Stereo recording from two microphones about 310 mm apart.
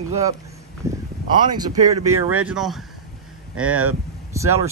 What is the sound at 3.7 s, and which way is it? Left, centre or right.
Speech, right.